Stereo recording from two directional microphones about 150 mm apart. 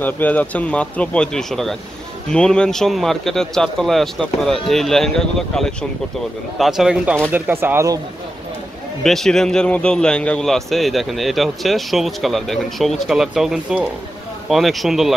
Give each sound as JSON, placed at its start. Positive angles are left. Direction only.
{"t": 0.0, "sound": "a man's voice", "side_deg": 10}
{"t": 7.2, "sound": "speech", "side_deg": -15}
{"t": 9.0, "sound": "a man's voice", "side_deg": 0}